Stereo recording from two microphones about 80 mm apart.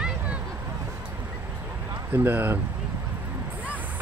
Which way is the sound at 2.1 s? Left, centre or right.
Right.